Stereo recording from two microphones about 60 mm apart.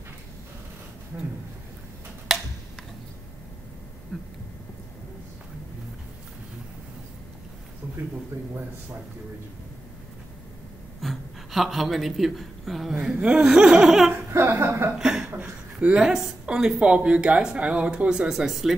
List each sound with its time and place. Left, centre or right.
4.1 s a sound: centre
11.0 s a woman's voice: centre
13.0 s speech: centre
14.3 s speech: right
15.0 s chuckle: centre
15.2 s a sound: right
15.9 s speech: centre
18.3 s speech: centre